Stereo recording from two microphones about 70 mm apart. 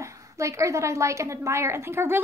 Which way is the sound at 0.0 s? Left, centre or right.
Right.